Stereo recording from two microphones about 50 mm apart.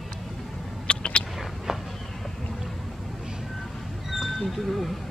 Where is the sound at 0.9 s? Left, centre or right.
Left.